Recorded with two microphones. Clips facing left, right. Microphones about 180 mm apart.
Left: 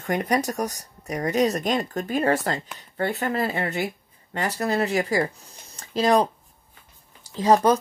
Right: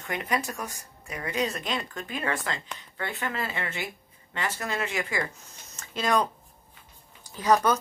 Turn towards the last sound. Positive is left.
turn(degrees=30)  # may be behind; listen again after turning